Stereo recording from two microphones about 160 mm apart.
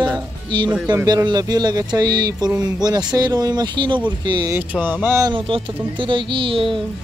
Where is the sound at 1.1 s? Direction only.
25° right (ahead or behind).